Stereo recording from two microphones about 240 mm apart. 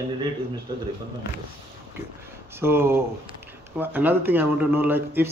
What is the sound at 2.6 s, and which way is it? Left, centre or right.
Speech, centre.